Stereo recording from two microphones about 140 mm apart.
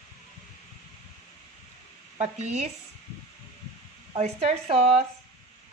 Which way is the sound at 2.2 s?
55° right (ahead or behind).